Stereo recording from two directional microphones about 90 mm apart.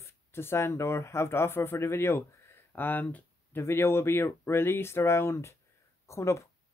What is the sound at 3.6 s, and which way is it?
Speech, 30° left (ahead or behind).